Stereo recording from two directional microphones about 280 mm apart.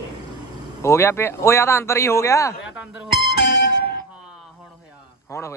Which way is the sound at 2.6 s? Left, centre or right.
Centre.